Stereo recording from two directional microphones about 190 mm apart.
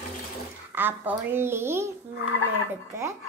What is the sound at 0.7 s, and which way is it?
A child's voice, 10° right (ahead or behind).